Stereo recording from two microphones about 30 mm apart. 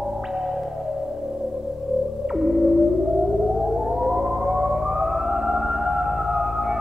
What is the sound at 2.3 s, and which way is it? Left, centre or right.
Music, centre.